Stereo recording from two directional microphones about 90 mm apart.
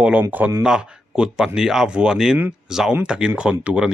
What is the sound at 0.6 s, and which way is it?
A man's voice, 10° right (ahead or behind).